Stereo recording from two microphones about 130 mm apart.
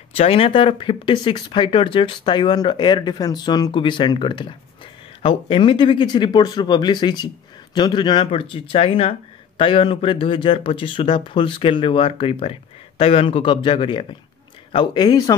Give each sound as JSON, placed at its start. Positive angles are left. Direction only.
{"t": 0.1, "sound": "speech", "side_deg": 50}